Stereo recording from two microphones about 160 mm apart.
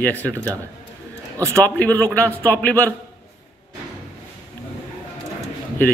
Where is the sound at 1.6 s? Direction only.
10° left (ahead or behind).